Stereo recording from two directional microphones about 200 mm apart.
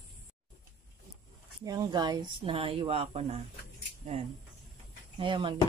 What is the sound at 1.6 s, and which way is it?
Speech, 20° right (ahead or behind).